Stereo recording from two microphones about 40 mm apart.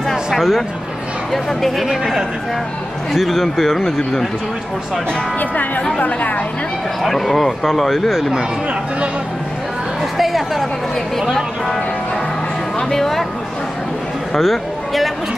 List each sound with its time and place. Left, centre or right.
0.1 s a sound: centre
1.3 s speech: centre
3.1 s speech: centre
5.9 s speech: left
7.0 s speech: centre
10.1 s a woman's voice: centre
12.9 s speech: centre
14.4 s a sound: centre